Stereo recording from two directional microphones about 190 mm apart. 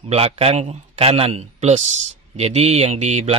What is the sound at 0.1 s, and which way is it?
A man's voice, 30° right (ahead or behind).